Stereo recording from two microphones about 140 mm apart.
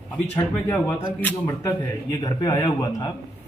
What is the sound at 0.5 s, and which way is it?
A man's voice, 15° left (ahead or behind).